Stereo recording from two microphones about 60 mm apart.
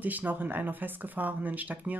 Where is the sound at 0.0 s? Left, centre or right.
Right.